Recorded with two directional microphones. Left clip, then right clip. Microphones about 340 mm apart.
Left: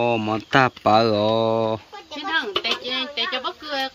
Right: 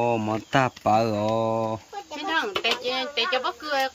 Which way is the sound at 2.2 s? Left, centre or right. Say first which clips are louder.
Left 2 dB; right.